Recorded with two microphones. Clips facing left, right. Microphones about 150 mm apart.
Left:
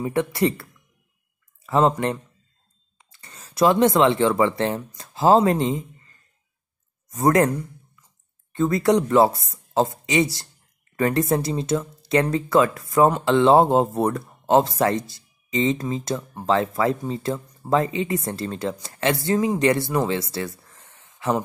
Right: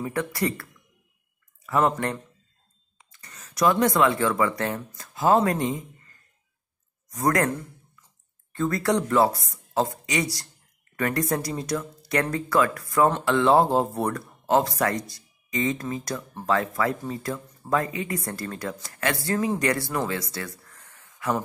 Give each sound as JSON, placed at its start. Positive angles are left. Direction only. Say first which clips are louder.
{"t": 0.0, "sound": "speech", "louder": "left 5 dB", "side_deg": 25}
{"t": 7.1, "sound": "speech", "louder": "left 5 dB", "side_deg": 25}
{"t": 20.1, "sound": "a sound", "louder": "left 5 dB", "side_deg": 25}